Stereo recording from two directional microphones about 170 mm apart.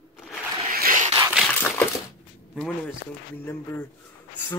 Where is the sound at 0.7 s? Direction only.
55° right (ahead or behind).